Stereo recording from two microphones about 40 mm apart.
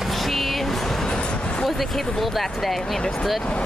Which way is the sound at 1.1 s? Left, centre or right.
Left.